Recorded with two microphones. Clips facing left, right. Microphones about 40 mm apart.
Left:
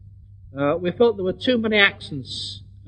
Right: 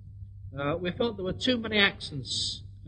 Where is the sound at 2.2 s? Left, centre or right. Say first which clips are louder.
Left 2 dB; centre.